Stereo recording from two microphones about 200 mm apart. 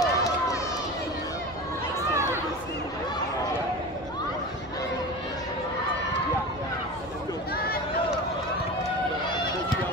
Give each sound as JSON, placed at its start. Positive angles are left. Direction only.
{"t": 0.0, "sound": "run", "side_deg": 15}